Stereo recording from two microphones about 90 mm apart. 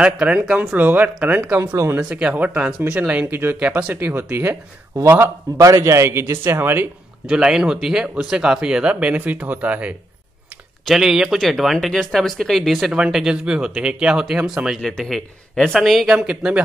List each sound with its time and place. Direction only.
0.0 s speech: 15° right (ahead or behind)
1.6 s speech: 35° right (ahead or behind)
2.0 s a man's voice: 10° right (ahead or behind); by 4.6 s 25° right (ahead or behind)
5.6 s a man's voice: 35° right (ahead or behind)
7.2 s speech: 10° right (ahead or behind)